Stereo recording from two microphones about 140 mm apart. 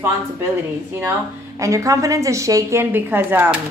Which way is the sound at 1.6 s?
25° right (ahead or behind).